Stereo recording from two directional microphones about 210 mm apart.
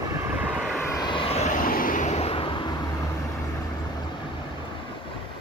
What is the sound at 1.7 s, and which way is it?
Vehicle, 40° left (ahead or behind).